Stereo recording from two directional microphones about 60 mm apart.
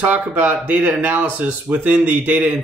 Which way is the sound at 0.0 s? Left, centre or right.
Right.